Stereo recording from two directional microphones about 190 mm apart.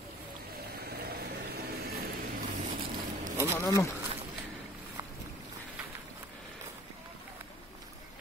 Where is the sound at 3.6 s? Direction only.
15° left (ahead or behind).